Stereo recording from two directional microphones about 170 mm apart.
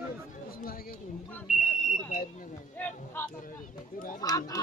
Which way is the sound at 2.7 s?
10° left (ahead or behind).